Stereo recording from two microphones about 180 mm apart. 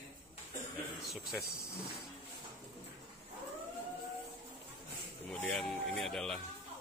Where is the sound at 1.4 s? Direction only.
60° left (ahead or behind).